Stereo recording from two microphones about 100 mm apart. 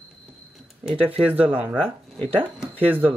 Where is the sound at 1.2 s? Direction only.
15° right (ahead or behind).